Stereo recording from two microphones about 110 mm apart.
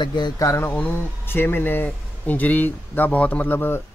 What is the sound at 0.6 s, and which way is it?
Speech, 15° left (ahead or behind).